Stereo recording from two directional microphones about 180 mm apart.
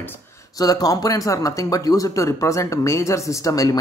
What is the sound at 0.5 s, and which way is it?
Speech, 20° left (ahead or behind).